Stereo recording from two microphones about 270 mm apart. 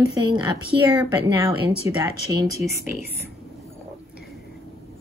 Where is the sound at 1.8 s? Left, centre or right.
Centre.